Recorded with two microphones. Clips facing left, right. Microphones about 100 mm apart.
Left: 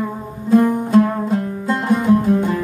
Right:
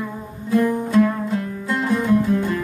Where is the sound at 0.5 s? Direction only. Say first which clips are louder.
Left 4 dB; 40° left (ahead or behind).